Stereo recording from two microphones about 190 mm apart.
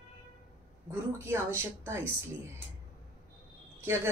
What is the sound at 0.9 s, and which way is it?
Speech, 15° right (ahead or behind).